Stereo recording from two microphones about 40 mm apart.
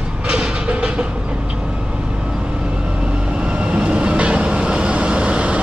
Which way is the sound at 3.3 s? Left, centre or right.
Right.